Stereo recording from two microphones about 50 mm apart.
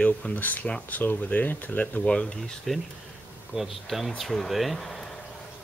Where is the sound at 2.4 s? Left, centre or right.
Centre.